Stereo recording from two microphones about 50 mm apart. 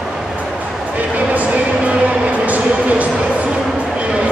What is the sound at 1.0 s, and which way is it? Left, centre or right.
Music, right.